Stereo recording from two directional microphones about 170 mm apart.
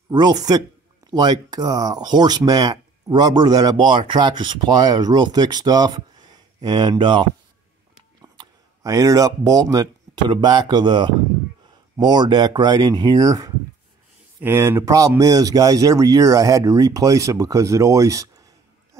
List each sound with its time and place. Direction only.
0.1 s speech: 25° right (ahead or behind)